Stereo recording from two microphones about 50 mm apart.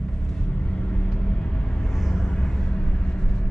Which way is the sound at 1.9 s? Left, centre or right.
Centre.